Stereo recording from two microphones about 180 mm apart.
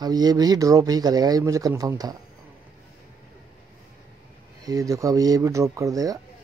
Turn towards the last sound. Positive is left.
turn(degrees=-20)  # may be behind; listen again after turning